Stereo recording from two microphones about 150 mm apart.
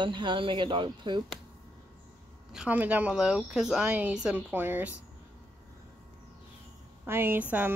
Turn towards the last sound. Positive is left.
turn(degrees=-10)  # may be behind; listen again after turning